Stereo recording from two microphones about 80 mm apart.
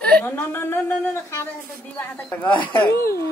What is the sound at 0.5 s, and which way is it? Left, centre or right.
Speech, left.